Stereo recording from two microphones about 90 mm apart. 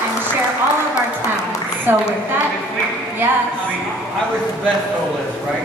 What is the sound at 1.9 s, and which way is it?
Speech, 25° right (ahead or behind).